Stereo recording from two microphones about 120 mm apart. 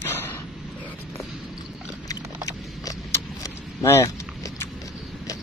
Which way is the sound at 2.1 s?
30° left (ahead or behind).